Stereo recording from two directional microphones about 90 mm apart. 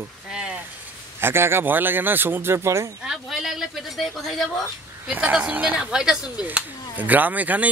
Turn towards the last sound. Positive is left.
turn(degrees=-20)  # may be behind; listen again after turning